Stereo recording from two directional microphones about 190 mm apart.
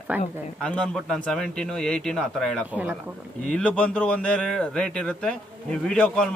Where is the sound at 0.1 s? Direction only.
10° right (ahead or behind).